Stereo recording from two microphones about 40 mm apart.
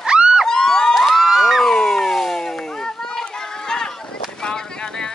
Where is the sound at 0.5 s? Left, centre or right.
Centre.